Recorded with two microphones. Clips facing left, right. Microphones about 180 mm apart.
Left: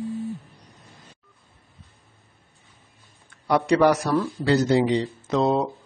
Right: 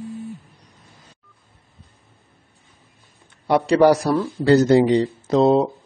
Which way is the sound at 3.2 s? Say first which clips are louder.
Right 3 dB; 25° right (ahead or behind).